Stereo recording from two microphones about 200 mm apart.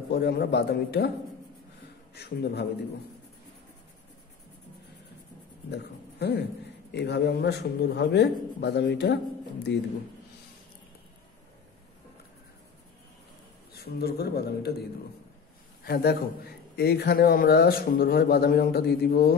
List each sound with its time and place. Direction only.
0.1 s a man's voice: 55° left (ahead or behind)
2.1 s a man's voice: 55° left (ahead or behind)
5.7 s a man's voice: 55° left (ahead or behind)
13.7 s a man's voice: 50° left (ahead or behind)
15.8 s a man's voice: 55° left (ahead or behind)